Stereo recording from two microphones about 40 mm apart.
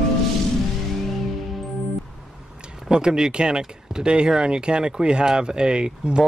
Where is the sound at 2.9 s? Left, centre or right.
Centre.